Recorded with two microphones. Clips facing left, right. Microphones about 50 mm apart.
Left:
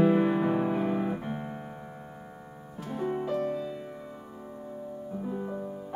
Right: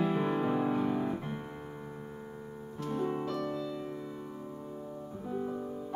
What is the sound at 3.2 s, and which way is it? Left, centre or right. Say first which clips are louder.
Music: left 4 dB; left.